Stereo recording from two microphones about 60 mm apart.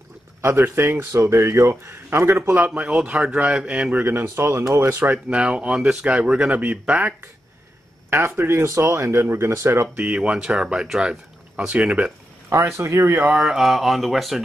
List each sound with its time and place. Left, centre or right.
0.4 s speech: right
2.6 s speech: centre
3.9 s speech: right
5.0 s speech: right
8.1 s speech: right
10.1 s speech: centre
12.4 s speech: right
13.4 s speech: centre